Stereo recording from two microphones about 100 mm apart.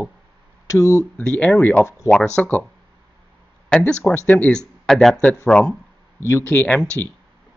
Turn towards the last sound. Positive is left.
turn(degrees=15)  # may be behind; listen again after turning